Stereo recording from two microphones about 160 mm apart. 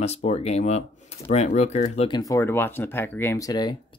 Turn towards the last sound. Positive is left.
turn(degrees=25)  # may be behind; listen again after turning